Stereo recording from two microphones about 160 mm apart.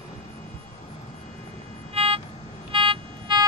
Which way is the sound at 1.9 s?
35° right (ahead or behind).